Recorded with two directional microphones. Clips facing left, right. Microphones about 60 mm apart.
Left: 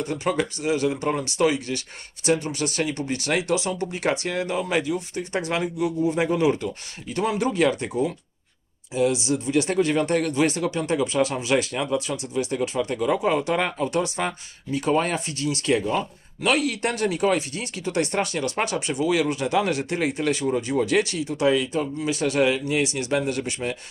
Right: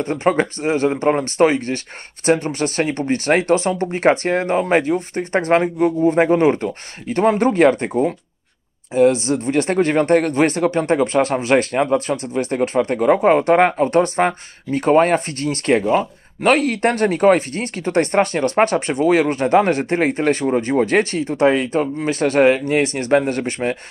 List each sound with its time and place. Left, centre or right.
0.0 s speech: right